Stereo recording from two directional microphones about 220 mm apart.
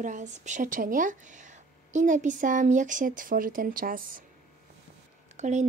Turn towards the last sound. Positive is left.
turn(degrees=-30)  # may be behind; listen again after turning